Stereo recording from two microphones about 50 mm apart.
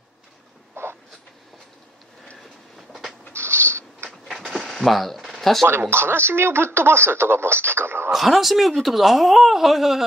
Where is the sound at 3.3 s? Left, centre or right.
Right.